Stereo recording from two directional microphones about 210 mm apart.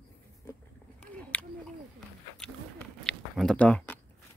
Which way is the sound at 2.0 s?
5° left (ahead or behind).